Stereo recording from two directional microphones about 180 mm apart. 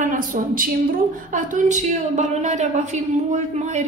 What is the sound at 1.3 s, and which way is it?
A woman's voice, 45° right (ahead or behind).